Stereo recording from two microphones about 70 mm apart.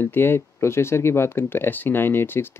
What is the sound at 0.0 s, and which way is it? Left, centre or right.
Speech, left.